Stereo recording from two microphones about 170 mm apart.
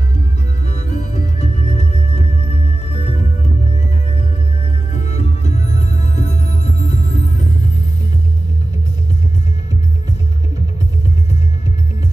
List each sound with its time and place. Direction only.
0.7 s music: 40° left (ahead or behind)
4.9 s music: 40° left (ahead or behind)